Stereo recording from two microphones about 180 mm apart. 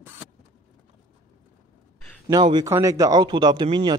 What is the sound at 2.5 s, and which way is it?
A man's voice, 15° right (ahead or behind).